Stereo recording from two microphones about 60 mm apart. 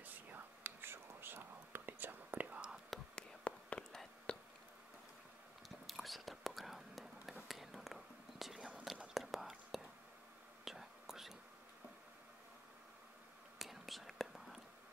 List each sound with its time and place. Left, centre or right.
0.0 s whispering: right
2.5 s whispering: centre
3.2 s a sound: centre
5.9 s whispering: centre
8.5 s whispering: right
9.1 s whispering: centre
13.6 s whispering: centre